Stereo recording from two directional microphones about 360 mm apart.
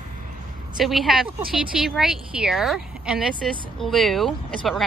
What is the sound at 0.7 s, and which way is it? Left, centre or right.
A woman's voice, centre.